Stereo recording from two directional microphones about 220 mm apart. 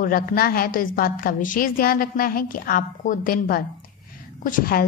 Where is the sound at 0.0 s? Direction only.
40° left (ahead or behind).